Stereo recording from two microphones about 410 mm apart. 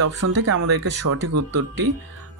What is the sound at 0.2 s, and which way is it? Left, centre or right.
Speech, right.